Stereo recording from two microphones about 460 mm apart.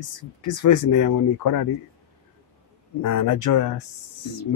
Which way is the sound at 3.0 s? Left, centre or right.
Left.